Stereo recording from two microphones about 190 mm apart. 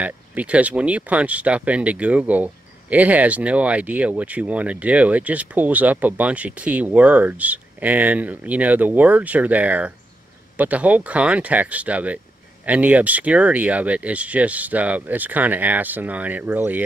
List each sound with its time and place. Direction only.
0.0 s speech: 10° right (ahead or behind)